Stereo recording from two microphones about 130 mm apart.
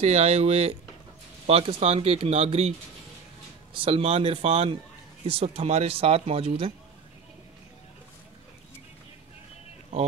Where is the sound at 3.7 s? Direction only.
45° right (ahead or behind).